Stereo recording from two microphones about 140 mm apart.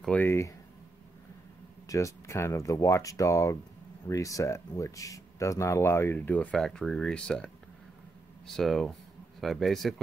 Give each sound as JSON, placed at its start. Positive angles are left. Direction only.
{"t": 0.0, "sound": "speech", "side_deg": 10}
{"t": 1.9, "sound": "speech", "side_deg": 20}
{"t": 8.5, "sound": "speech", "side_deg": 0}